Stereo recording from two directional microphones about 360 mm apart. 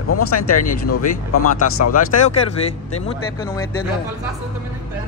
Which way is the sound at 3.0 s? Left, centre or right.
Centre.